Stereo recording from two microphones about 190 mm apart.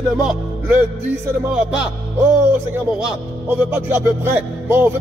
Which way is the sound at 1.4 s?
5° right (ahead or behind).